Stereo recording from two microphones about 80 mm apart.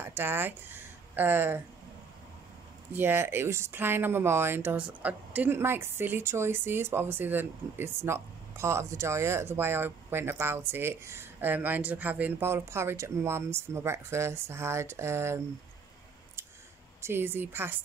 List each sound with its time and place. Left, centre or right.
0.0 s speech: right
2.9 s a woman's voice: right
17.0 s a woman's voice: right